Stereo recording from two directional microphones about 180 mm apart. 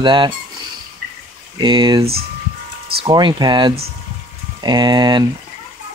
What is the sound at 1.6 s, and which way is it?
Speech, 25° right (ahead or behind).